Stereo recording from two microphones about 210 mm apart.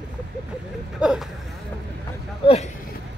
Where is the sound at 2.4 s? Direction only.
30° left (ahead or behind).